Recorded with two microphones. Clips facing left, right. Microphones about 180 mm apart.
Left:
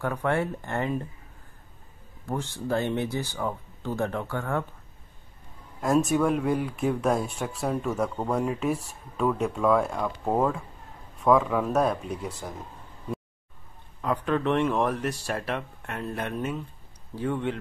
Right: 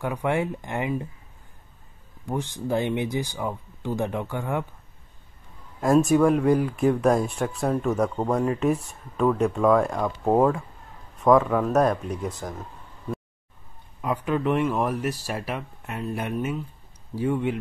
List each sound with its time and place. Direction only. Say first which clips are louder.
0.0 s speech: right 1 dB; 15° right (ahead or behind)
2.2 s speech: right 2 dB; 15° right (ahead or behind)
5.8 s speech: right 4 dB; centre (ahead or behind)
11.2 s speech: right 3 dB; centre (ahead or behind)
14.0 s speech: right 1 dB; 10° right (ahead or behind)